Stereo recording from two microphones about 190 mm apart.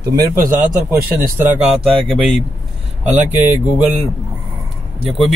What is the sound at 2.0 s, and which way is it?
Speech, centre (ahead or behind).